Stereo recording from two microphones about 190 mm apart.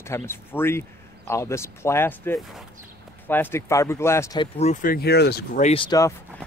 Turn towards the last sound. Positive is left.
turn(degrees=15)  # may be behind; listen again after turning